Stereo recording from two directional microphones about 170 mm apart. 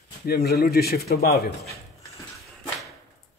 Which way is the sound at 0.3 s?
65° left (ahead or behind).